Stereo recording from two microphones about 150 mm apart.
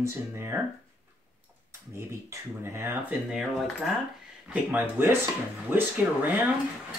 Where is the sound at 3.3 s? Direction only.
5° right (ahead or behind).